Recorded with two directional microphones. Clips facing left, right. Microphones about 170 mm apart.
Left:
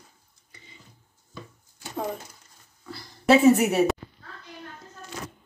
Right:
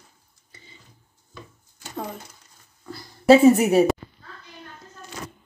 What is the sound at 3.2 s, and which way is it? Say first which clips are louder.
Speech: right 4 dB; 35° right (ahead or behind).